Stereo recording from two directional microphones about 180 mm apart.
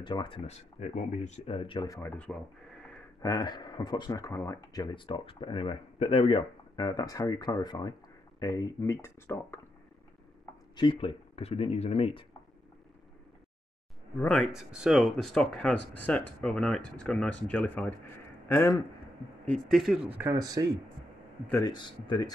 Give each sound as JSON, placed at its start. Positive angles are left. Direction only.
{"t": 0.0, "sound": "speech", "side_deg": 25}
{"t": 3.2, "sound": "speech", "side_deg": 20}
{"t": 10.8, "sound": "speech", "side_deg": 30}
{"t": 14.2, "sound": "speech", "side_deg": 5}
{"t": 19.4, "sound": "speech", "side_deg": 5}
{"t": 21.5, "sound": "speech", "side_deg": 20}